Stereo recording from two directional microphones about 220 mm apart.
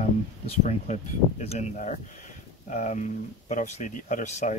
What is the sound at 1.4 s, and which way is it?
Speech, 30° left (ahead or behind).